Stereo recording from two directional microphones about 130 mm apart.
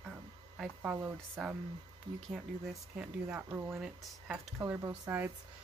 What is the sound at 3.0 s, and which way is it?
Speech, 10° right (ahead or behind).